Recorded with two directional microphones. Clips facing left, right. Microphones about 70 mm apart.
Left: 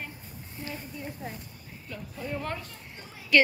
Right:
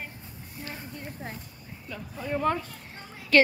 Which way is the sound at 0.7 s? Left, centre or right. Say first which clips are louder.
Left 1 dB; right.